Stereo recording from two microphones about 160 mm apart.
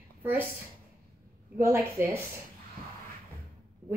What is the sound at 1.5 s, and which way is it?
Speech, 15° right (ahead or behind).